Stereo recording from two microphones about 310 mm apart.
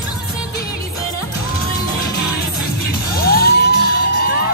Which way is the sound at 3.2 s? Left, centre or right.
Left.